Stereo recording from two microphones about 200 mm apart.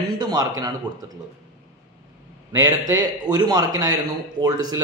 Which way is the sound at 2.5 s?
20° right (ahead or behind).